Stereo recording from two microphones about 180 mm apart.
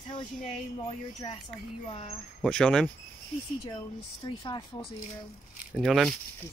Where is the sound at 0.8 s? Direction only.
30° left (ahead or behind).